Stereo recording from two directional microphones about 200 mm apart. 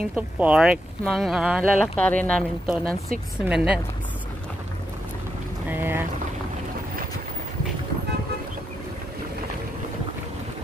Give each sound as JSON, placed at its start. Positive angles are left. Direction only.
{"t": 0.0, "sound": "speech", "side_deg": -5}
{"t": 5.7, "sound": "speech", "side_deg": -10}